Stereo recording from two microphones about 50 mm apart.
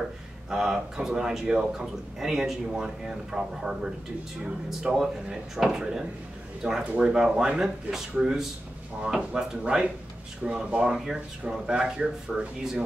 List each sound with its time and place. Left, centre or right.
0.5 s speech: centre
6.8 s speech: right
7.1 s speech: centre